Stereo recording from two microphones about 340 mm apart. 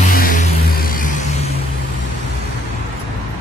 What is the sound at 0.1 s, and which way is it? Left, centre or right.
Music, left.